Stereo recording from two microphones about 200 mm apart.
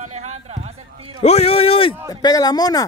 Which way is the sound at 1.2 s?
30° left (ahead or behind).